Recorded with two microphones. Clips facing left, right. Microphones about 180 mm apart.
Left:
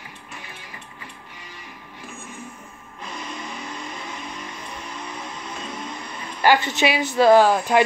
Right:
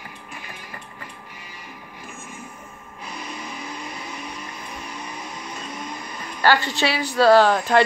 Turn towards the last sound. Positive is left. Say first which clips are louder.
# even
turn(degrees=10)  # may be behind; listen again after turning